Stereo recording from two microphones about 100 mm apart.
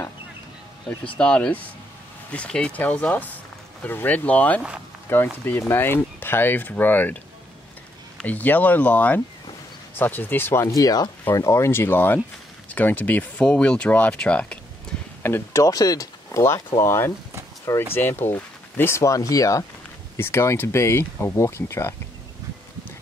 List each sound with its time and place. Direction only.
0.8 s speech: 10° left (ahead or behind)
8.2 s speech: 15° left (ahead or behind)
10.6 s speech: 35° left (ahead or behind); by 14.6 s 10° left (ahead or behind)
15.2 s speech: 25° left (ahead or behind)
15.6 s speech: 40° left (ahead or behind)